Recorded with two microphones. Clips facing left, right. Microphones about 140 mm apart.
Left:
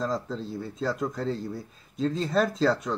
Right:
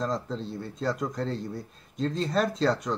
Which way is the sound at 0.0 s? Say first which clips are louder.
Left 1 dB; centre (ahead or behind).